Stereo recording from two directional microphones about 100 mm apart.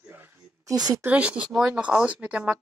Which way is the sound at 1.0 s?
15° right (ahead or behind).